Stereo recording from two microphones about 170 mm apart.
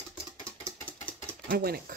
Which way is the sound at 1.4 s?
60° right (ahead or behind).